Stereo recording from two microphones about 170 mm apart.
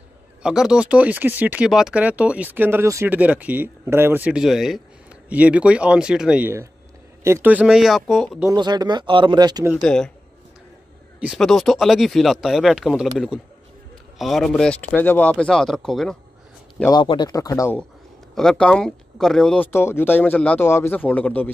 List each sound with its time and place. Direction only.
0.4 s speech: 5° right (ahead or behind)
8.5 s speech: 25° right (ahead or behind)
9.8 s speech: 5° left (ahead or behind)
11.1 s speech: centre (ahead or behind)
16.9 s speech: 25° left (ahead or behind)
18.3 s speech: 5° left (ahead or behind)